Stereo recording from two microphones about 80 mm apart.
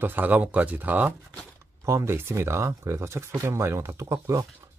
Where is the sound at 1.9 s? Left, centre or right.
Right.